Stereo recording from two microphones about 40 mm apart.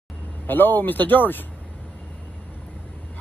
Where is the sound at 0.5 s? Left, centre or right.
Left.